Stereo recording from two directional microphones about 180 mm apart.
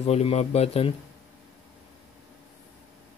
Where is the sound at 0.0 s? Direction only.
35° left (ahead or behind).